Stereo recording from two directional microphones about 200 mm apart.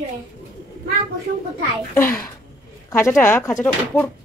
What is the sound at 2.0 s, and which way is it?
Speech, 10° left (ahead or behind).